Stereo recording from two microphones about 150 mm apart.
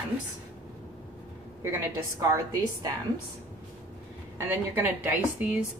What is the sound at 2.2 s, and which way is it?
Speech, 25° right (ahead or behind).